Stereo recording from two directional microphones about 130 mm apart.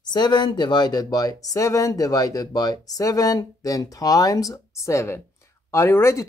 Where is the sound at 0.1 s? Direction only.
35° left (ahead or behind).